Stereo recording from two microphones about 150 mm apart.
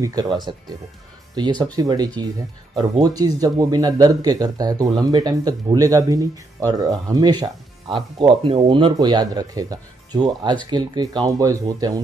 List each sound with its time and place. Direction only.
0.0 s speech: 25° right (ahead or behind)